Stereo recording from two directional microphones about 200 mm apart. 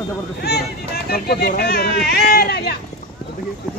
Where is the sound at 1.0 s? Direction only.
50° left (ahead or behind).